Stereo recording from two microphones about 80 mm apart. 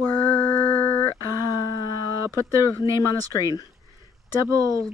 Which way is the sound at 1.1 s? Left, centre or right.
Left.